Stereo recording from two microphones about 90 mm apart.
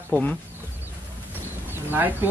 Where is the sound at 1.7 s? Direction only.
25° right (ahead or behind).